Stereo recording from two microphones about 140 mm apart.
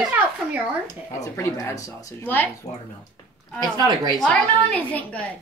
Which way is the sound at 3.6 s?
30° right (ahead or behind).